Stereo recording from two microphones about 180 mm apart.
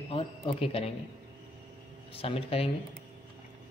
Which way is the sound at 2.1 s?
30° left (ahead or behind).